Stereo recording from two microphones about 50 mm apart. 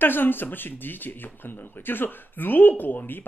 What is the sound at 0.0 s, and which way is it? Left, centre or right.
Speech, left.